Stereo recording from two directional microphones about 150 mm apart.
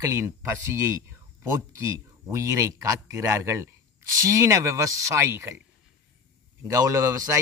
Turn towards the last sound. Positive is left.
turn(degrees=-20)  # may be behind; listen again after turning